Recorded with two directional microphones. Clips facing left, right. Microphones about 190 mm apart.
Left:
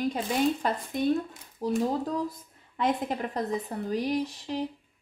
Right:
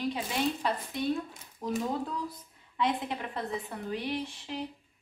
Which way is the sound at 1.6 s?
30° left (ahead or behind).